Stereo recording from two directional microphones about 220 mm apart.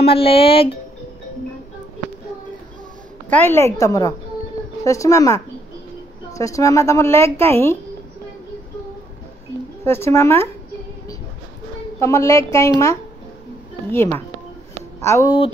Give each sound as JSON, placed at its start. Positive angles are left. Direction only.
{"t": 0.0, "sound": "speech", "side_deg": 25}
{"t": 3.3, "sound": "a woman's voice", "side_deg": 10}
{"t": 9.8, "sound": "a woman's voice", "side_deg": 10}
{"t": 12.0, "sound": "a woman's voice", "side_deg": 15}
{"t": 13.9, "sound": "a woman's voice", "side_deg": 10}